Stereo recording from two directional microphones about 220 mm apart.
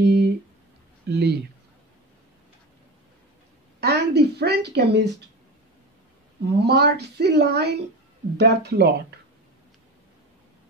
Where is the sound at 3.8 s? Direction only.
45° right (ahead or behind).